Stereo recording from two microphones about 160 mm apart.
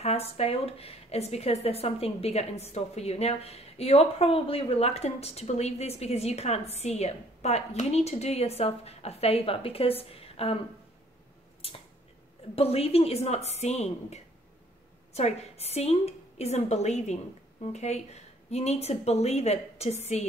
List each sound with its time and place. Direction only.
0.0 s speech: 40° left (ahead or behind)
11.6 s a sound: 35° left (ahead or behind)
12.5 s speech: 40° left (ahead or behind)